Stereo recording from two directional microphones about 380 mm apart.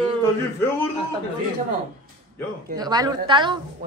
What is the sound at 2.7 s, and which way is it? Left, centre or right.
Speech, centre.